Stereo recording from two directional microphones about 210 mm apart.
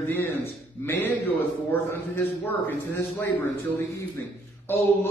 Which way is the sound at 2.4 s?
10° left (ahead or behind).